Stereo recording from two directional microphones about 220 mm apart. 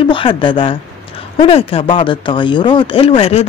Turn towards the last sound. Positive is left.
turn(degrees=25)  # may be behind; listen again after turning